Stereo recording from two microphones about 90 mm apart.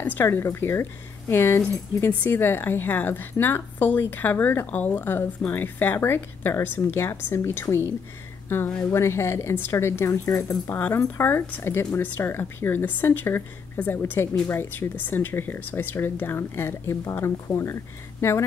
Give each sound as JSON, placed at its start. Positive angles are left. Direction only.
{"t": 0.2, "sound": "speech", "side_deg": 30}
{"t": 10.7, "sound": "speech", "side_deg": 25}